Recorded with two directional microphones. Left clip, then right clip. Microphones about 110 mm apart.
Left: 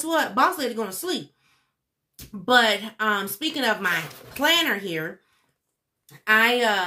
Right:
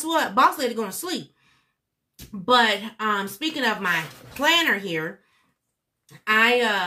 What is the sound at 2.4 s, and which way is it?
A woman's voice, 15° left (ahead or behind).